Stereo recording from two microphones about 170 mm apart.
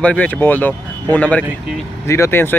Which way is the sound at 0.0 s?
10° left (ahead or behind).